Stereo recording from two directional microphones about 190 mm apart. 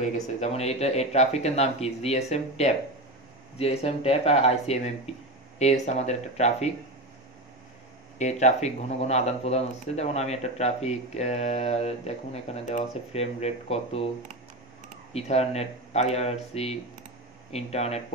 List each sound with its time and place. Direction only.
0.0 s speech: 35° left (ahead or behind)
8.2 s speech: 35° left (ahead or behind)
15.1 s speech: 35° left (ahead or behind)